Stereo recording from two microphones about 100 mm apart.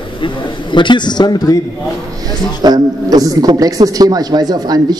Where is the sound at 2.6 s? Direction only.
40° right (ahead or behind).